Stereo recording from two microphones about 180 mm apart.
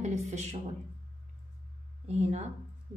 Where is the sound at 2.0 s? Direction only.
40° right (ahead or behind).